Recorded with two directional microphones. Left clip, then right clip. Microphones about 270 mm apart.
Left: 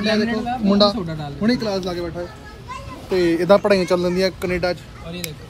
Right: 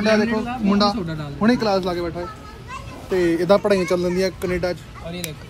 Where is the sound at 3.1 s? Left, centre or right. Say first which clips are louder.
Left 2 dB; centre.